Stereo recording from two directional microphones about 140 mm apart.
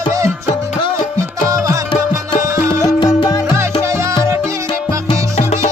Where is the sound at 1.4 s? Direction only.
25° right (ahead or behind).